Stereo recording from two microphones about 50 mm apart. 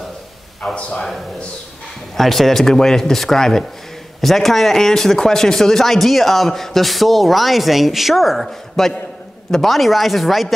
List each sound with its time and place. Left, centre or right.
0.7 s a man's voice: left
2.1 s speech: centre